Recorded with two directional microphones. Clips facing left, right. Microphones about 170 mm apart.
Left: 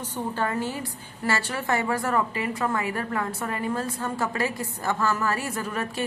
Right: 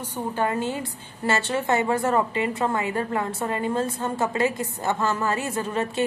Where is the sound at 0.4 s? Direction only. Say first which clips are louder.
Right 4 dB; 20° right (ahead or behind).